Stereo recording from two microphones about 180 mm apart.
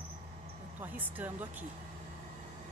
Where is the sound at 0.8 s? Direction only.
10° right (ahead or behind).